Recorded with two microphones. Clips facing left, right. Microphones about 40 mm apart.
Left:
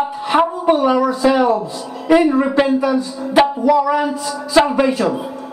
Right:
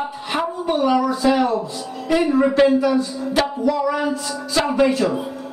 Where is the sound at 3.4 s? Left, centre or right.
Left.